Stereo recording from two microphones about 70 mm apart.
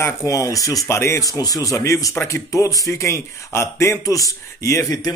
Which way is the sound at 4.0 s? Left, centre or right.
Left.